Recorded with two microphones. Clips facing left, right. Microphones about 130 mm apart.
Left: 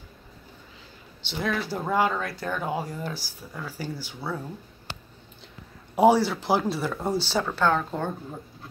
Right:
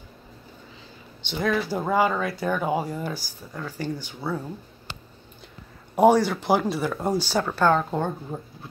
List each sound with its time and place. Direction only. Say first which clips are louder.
1.2 s speech: right 4 dB; centre (ahead or behind)
5.9 s speech: right 1 dB; 5° left (ahead or behind); by 8.1 s 10° right (ahead or behind)